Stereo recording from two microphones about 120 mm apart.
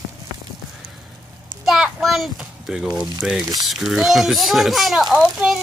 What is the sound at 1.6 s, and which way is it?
A child's voice, 5° right (ahead or behind).